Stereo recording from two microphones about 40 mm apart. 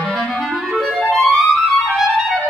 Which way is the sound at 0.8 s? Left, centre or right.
Centre.